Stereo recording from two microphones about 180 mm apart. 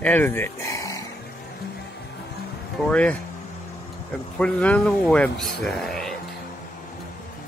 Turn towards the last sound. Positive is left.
turn(degrees=0)  # may be behind; listen again after turning